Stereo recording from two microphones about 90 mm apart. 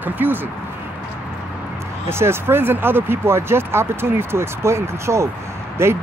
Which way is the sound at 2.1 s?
30° right (ahead or behind).